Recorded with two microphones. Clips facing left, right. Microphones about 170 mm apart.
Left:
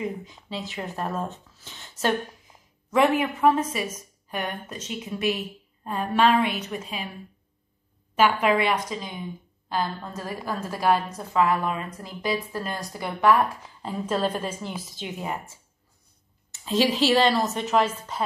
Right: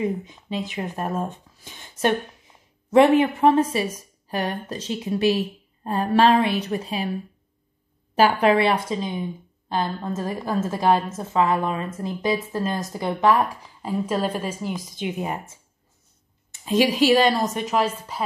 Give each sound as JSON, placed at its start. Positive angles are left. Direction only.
{"t": 0.0, "sound": "speech", "side_deg": -20}
{"t": 2.9, "sound": "a woman's voice", "side_deg": -30}
{"t": 8.2, "sound": "a woman's voice", "side_deg": -35}
{"t": 13.8, "sound": "a woman's voice", "side_deg": -10}
{"t": 16.6, "sound": "speech", "side_deg": -15}